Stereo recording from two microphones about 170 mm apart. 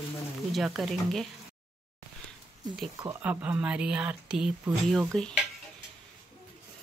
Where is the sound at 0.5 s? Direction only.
Centre (ahead or behind).